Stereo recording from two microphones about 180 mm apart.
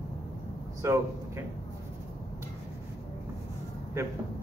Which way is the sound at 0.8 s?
15° right (ahead or behind).